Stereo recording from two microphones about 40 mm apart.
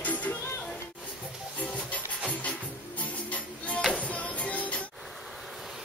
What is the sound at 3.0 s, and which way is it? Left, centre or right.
Music, left.